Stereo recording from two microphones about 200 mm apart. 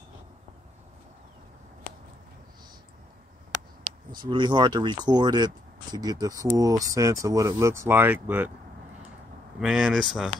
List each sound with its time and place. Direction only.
4.1 s speech: 20° right (ahead or behind)
9.6 s speech: 5° right (ahead or behind)